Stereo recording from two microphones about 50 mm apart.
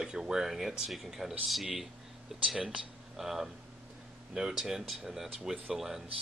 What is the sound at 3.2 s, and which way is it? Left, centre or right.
Speech, centre.